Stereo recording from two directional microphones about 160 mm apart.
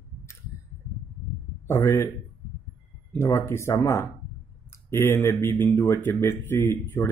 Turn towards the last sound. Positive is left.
turn(degrees=15)  # may be behind; listen again after turning